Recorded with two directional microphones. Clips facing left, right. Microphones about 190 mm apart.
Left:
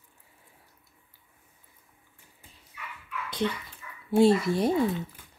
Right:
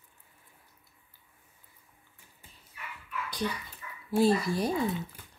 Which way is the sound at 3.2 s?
25° left (ahead or behind).